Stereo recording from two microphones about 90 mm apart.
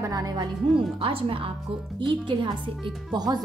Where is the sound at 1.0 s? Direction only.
80° right.